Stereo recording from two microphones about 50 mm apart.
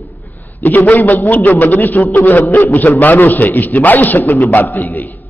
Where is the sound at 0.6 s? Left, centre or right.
Left.